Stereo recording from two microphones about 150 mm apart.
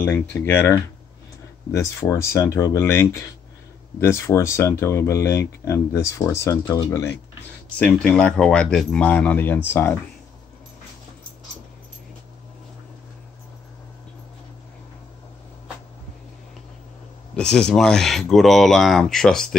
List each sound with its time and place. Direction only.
0.0 s speech: 10° left (ahead or behind)
17.4 s speech: 5° left (ahead or behind)